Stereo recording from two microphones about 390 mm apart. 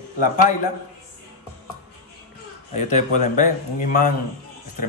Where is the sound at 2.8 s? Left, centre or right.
Centre.